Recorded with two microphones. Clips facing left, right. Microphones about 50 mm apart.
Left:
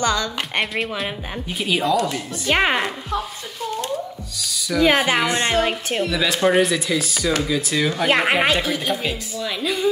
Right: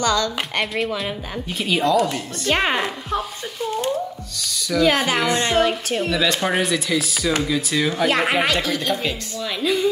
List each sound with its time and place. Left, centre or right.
0.0 s a woman's voice: left
0.6 s speech: centre
1.0 s a woman's voice: centre
4.4 s owl: centre
4.8 s a woman's voice: left
6.1 s speech: centre
8.1 s a woman's voice: left
8.4 s a woman's voice: centre